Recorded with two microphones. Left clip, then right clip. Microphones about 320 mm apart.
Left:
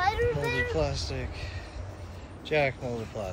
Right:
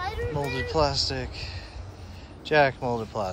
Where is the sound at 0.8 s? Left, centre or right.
Centre.